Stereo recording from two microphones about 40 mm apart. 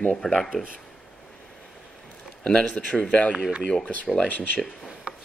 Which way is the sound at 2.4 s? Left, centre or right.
Left.